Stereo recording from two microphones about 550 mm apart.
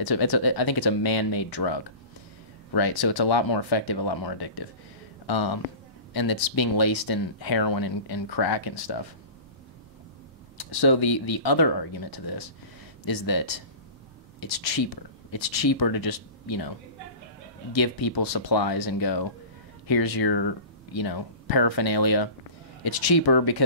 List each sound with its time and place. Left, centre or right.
0.0 s speech: left
10.7 s speech: left
17.7 s speech: left